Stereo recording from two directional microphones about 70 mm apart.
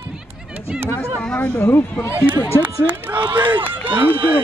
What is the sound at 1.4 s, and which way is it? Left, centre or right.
Speech, left.